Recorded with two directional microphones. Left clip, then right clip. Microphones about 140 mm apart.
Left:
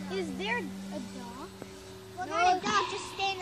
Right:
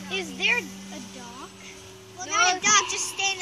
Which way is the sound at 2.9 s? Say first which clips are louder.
Right 5 dB; 10° left (ahead or behind).